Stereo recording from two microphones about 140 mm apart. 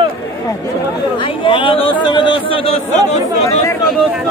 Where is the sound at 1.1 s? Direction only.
35° left (ahead or behind).